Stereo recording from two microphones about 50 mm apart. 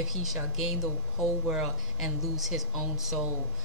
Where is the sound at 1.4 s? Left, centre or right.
Centre.